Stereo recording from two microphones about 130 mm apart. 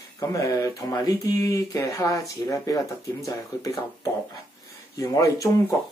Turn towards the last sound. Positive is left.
turn(degrees=25)  # may be behind; listen again after turning